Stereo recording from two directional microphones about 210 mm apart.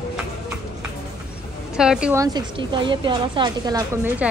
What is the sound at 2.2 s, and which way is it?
A woman's voice, 20° right (ahead or behind).